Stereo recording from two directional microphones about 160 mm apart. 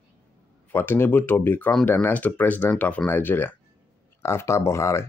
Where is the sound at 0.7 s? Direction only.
15° left (ahead or behind).